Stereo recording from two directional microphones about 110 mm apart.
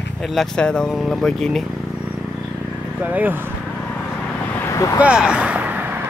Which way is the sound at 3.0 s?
15° right (ahead or behind).